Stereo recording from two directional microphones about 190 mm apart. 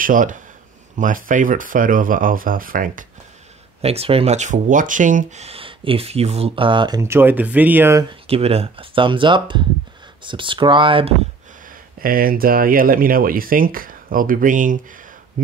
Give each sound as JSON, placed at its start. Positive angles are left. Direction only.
{"t": 0.0, "sound": "speech", "side_deg": -45}
{"t": 3.8, "sound": "speech", "side_deg": -30}
{"t": 7.0, "sound": "speech", "side_deg": -10}
{"t": 8.1, "sound": "speech", "side_deg": -30}
{"t": 12.0, "sound": "speech", "side_deg": -50}